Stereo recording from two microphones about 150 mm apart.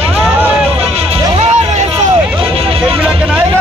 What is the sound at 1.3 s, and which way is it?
Music, 45° right (ahead or behind).